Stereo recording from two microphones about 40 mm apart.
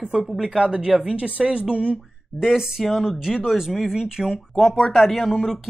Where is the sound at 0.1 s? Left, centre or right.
Centre.